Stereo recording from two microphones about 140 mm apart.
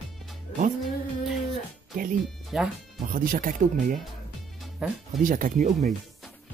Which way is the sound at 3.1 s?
85° right.